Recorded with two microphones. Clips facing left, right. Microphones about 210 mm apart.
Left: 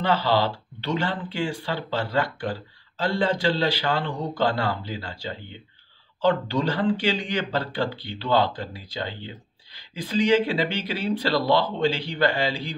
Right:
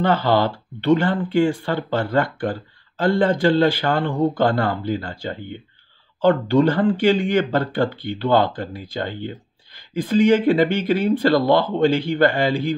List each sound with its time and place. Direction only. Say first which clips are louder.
0.0 s speech: right 4 dB; 50° right (ahead or behind)